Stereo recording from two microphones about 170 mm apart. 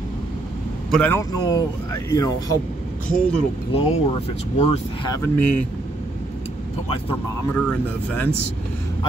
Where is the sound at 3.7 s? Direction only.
35° left (ahead or behind).